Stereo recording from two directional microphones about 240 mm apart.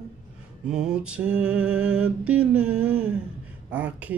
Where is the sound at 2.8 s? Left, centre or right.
Centre.